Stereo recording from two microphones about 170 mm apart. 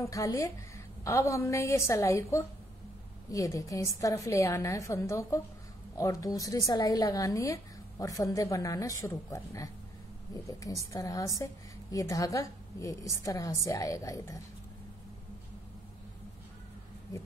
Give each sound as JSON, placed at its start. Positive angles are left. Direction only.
{"t": 0.0, "sound": "a woman's voice", "side_deg": 20}